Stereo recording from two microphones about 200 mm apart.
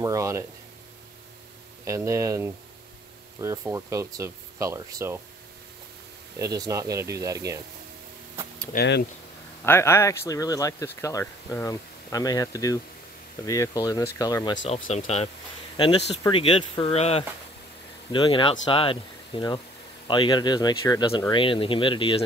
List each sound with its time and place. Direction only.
0.0 s speech: 15° right (ahead or behind)
1.9 s speech: 15° right (ahead or behind)
6.3 s speech: 15° right (ahead or behind)
8.7 s speech: 55° left (ahead or behind)
9.7 s speech: 10° left (ahead or behind)
14.9 s speech: 30° left (ahead or behind)
16.3 s speech: 25° left (ahead or behind)